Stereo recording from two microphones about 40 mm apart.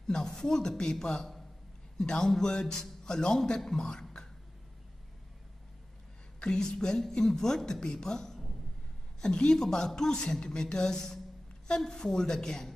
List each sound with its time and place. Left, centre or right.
0.0 s a man's voice: centre
6.4 s a man's voice: left